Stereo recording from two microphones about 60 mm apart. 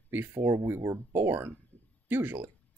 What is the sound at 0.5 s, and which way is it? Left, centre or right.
Speech, right.